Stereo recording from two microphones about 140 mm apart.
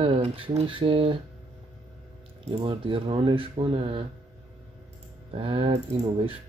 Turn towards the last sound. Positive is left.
turn(degrees=-40)  # may be behind; listen again after turning